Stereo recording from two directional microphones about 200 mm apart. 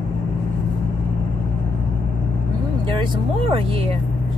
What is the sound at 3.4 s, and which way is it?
Speech, 30° right (ahead or behind).